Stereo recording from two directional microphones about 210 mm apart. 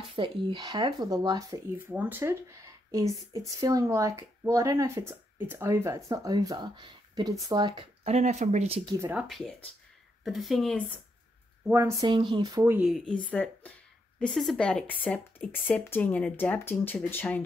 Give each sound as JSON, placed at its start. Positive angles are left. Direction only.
{"t": 0.1, "sound": "speech", "side_deg": -25}
{"t": 9.0, "sound": "speech", "side_deg": -5}
{"t": 11.6, "sound": "speech", "side_deg": -10}